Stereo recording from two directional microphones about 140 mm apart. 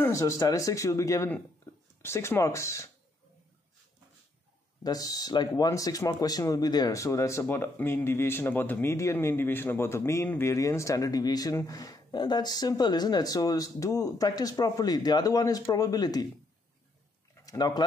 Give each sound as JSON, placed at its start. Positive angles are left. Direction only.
{"t": 0.0, "sound": "speech", "side_deg": 20}
{"t": 4.8, "sound": "speech", "side_deg": 25}
{"t": 17.5, "sound": "speech", "side_deg": 25}